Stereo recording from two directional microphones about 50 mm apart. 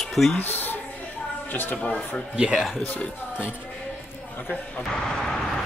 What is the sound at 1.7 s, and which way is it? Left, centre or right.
Speech, left.